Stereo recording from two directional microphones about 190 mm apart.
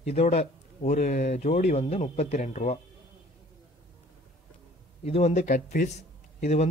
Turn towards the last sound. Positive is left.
turn(degrees=35)  # may be behind; listen again after turning